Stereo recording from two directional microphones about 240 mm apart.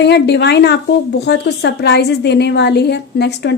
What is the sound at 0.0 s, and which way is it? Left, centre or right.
A woman's voice, left.